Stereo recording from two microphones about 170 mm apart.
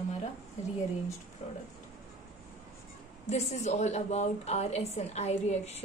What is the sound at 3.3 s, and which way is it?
A woman's voice, 40° left (ahead or behind).